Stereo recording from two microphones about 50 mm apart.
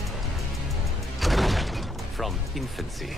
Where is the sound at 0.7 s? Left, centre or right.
Centre.